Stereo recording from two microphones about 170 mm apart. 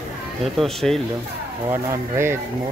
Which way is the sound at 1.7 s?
15° right (ahead or behind).